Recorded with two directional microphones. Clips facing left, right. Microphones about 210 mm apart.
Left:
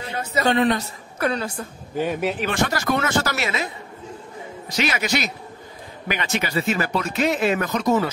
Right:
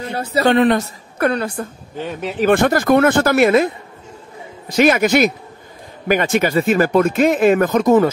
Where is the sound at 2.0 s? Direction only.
10° left (ahead or behind).